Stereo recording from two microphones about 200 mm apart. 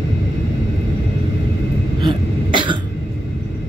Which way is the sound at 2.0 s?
25° right (ahead or behind).